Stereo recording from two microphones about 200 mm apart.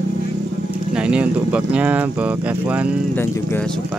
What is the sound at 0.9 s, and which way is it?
Speech, 5° right (ahead or behind).